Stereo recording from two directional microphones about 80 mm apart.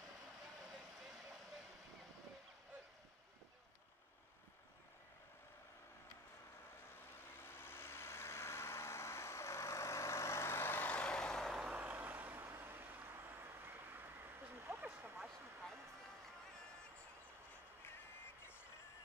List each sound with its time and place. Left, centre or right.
7.4 s vehicle: left; by 11.7 s centre
11.7 s vehicle: right